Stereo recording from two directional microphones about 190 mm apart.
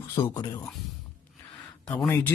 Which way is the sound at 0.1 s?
20° left (ahead or behind).